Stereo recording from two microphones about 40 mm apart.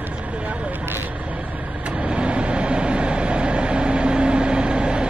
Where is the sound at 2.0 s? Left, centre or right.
Right.